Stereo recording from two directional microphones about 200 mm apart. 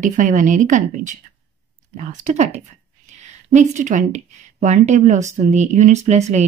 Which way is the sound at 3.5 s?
35° right (ahead or behind).